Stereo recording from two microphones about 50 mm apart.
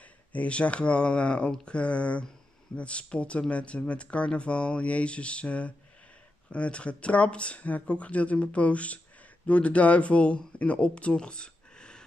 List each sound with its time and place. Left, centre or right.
0.3 s speech: left